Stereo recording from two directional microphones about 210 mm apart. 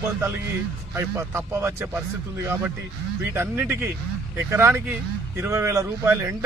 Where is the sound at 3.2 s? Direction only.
10° right (ahead or behind).